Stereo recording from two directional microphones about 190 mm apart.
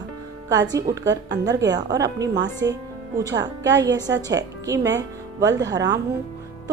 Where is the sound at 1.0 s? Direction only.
70° right (ahead or behind).